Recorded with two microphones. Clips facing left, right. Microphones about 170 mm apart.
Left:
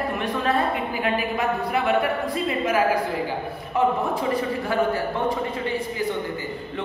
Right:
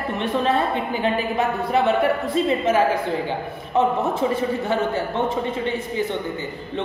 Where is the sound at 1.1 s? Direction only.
25° right (ahead or behind).